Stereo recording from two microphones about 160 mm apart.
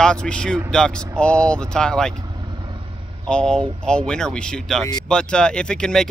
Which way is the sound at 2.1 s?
25° right (ahead or behind).